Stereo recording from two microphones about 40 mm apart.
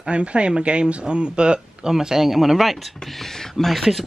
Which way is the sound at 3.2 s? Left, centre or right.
Centre.